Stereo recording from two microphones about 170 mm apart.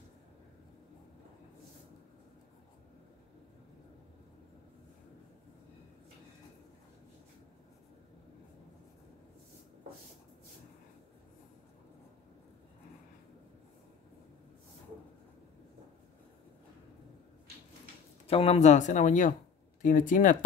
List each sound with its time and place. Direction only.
18.2 s speech: 35° left (ahead or behind)